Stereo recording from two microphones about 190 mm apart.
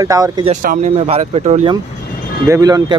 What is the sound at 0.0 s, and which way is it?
Speech, 20° right (ahead or behind).